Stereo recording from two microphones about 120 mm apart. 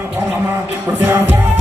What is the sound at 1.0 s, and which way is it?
Music, 15° right (ahead or behind).